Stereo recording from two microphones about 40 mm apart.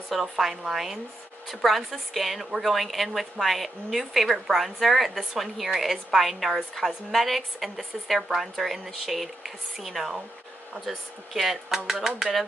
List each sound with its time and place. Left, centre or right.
0.1 s a woman's voice: centre